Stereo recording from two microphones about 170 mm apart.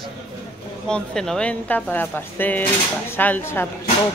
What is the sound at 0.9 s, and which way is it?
Speech, 5° left (ahead or behind).